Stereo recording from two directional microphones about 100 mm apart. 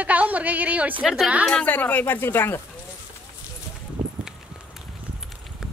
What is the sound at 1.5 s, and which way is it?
Speech, 15° left (ahead or behind).